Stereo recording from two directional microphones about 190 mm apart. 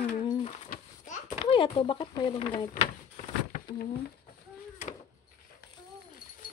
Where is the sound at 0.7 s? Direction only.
40° left (ahead or behind).